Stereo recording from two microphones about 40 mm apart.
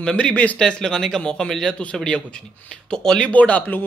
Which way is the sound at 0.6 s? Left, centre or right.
Centre.